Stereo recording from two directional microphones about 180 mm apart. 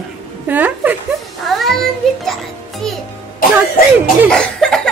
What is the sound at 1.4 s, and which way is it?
Music, centre (ahead or behind).